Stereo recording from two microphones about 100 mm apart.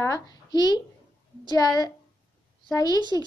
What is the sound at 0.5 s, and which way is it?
Speech, 45° left (ahead or behind).